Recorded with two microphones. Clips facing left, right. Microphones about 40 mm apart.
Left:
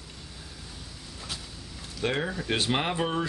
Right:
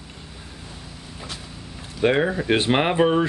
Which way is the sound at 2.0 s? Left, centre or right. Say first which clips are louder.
Right 9 dB; right.